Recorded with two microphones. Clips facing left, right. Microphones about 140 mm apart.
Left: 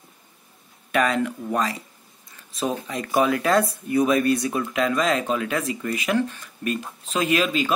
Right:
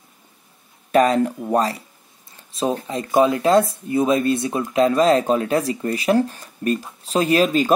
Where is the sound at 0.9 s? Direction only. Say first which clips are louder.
Right 6 dB; 35° right (ahead or behind).